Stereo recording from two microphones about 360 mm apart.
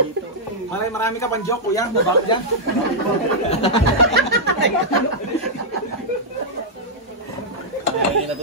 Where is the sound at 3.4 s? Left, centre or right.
Centre.